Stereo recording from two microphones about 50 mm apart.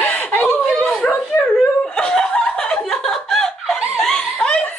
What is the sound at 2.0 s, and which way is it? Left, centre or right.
Snicker, centre.